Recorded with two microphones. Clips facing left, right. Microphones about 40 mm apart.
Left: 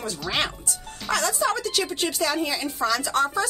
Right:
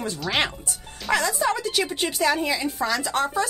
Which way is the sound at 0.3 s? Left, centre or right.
Centre.